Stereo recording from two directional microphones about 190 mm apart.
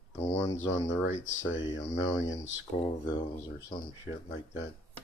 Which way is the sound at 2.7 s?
25° left (ahead or behind).